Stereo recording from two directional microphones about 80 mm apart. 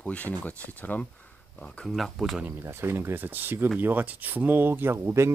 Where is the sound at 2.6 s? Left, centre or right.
Right.